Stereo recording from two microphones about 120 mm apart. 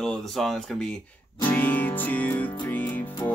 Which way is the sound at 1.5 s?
15° left (ahead or behind).